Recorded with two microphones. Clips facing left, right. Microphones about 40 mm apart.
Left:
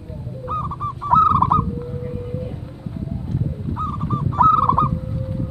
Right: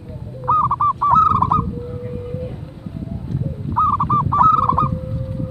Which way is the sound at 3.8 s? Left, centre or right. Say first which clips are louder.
Right 10 dB; right.